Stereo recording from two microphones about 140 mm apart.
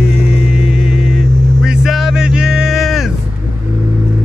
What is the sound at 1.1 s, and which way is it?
Vehicle, 5° right (ahead or behind).